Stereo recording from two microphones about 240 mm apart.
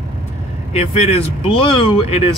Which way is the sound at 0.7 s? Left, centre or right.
Left.